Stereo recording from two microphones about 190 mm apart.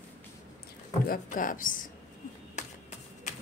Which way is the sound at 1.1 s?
45° left (ahead or behind).